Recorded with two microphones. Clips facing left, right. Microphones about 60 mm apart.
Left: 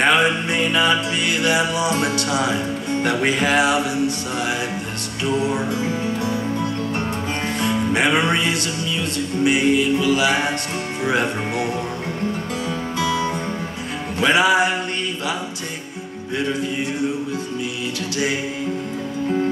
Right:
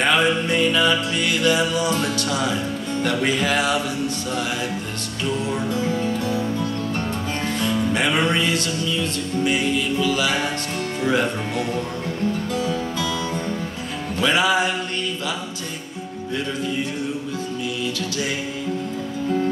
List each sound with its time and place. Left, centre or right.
0.0 s music: left
5.2 s music: centre
11.0 s speech: centre
12.6 s music: left